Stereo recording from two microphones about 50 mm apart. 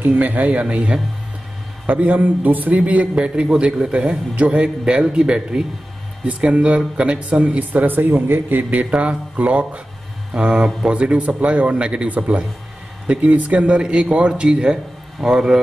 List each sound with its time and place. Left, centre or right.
0.0 s a man's voice: right; by 15.6 s centre